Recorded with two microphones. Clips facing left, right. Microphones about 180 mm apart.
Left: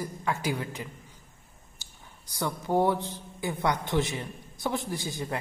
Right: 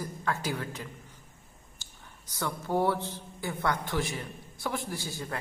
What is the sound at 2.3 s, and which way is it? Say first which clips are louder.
A man's voice: left 3 dB; 15° left (ahead or behind).